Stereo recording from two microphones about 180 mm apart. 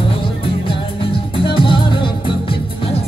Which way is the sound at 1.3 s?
30° left (ahead or behind).